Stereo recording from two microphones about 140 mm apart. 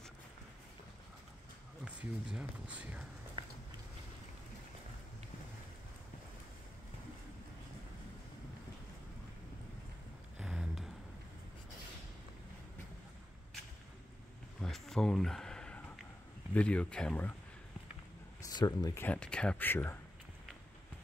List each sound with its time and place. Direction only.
2.0 s speech: 10° right (ahead or behind)
10.4 s a sound: 5° right (ahead or behind)
14.6 s a sound: 5° left (ahead or behind)
16.5 s speech: 10° left (ahead or behind)
18.4 s speech: 30° left (ahead or behind)
19.0 s speech: 5° left (ahead or behind)